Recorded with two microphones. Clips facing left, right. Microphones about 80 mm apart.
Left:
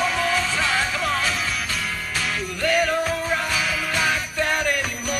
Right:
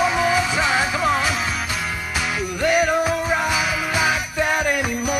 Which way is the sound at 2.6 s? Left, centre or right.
Centre.